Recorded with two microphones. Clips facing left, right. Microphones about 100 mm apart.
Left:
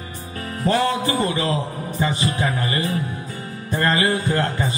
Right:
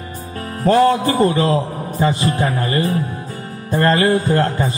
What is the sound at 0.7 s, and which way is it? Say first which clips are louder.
A man's voice: right 7 dB; 45° right (ahead or behind).